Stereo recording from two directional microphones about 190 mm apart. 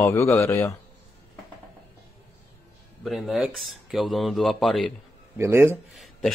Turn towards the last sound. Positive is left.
turn(degrees=0)  # may be behind; listen again after turning